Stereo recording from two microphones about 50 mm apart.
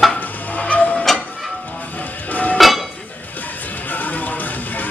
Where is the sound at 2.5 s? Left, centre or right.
Centre.